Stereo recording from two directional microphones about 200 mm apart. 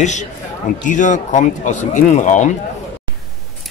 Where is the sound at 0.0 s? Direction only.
35° left (ahead or behind).